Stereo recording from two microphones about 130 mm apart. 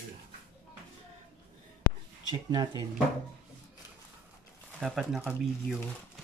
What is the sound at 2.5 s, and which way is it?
Speech, 30° right (ahead or behind).